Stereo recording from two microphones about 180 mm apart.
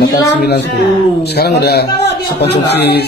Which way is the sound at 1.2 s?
65° left (ahead or behind).